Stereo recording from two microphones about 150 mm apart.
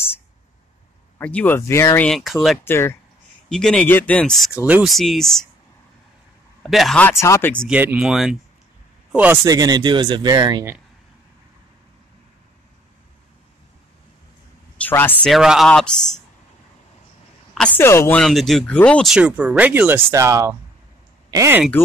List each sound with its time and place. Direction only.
1.1 s speech: 10° left (ahead or behind)
2.0 s speech: centre (ahead or behind)
2.6 s speech: 15° left (ahead or behind)
3.4 s speech: 5° left (ahead or behind)
4.6 s speech: 10° right (ahead or behind)
4.8 s speech: centre (ahead or behind)
6.6 s speech: centre (ahead or behind)
7.0 s speech: 15° left (ahead or behind)
7.6 s speech: 10° right (ahead or behind); by 10.7 s 25° right (ahead or behind)
14.8 s speech: 15° left (ahead or behind)
15.2 s speech: centre (ahead or behind)
17.6 s speech: 10° left (ahead or behind)
18.2 s speech: centre (ahead or behind)
19.1 s speech: 5° right (ahead or behind)